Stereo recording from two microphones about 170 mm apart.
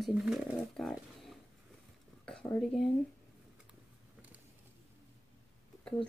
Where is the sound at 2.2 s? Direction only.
5° left (ahead or behind).